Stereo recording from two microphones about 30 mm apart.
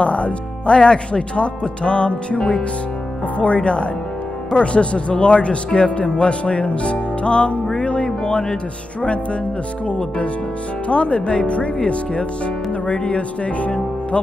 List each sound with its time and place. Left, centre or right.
0.0 s speech: left
0.7 s speech: left
7.7 s music: left
8.3 s speech: left